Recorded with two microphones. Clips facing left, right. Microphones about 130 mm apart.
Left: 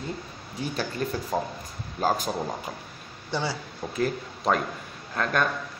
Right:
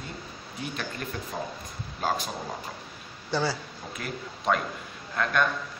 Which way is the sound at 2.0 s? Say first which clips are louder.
Left 4 dB; 45° left (ahead or behind).